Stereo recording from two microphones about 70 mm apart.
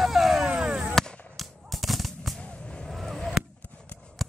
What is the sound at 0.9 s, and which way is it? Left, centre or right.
Fireworks, centre.